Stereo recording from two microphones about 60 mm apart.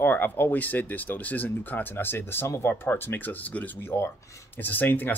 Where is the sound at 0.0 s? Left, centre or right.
Left.